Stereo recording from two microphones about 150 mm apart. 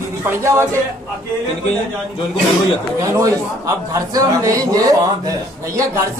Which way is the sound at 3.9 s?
20° right (ahead or behind).